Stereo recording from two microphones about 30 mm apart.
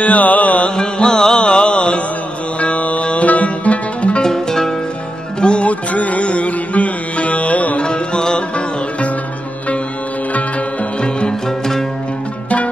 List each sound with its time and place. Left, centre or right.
0.0 s music: left
0.7 s music: left
1.4 s mantra: left
2.6 s music: left
4.2 s music: centre
5.4 s music: left
5.7 s music: left
7.8 s music: left
11.0 s music: left
11.4 s music: centre